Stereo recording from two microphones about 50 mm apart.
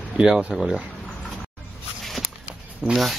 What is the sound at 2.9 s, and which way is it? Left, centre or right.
Speech, centre.